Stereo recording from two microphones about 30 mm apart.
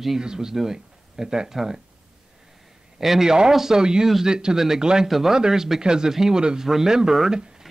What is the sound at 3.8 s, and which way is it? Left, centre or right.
Speech, right.